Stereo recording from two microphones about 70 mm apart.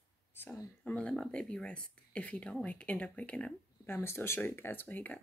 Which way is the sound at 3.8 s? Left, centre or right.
Left.